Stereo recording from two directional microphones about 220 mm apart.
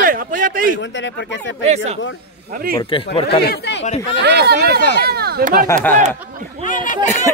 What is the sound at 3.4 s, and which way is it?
Speech, 50° left (ahead or behind).